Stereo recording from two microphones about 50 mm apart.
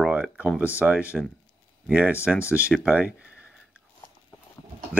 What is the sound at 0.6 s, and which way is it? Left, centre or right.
Speech, right.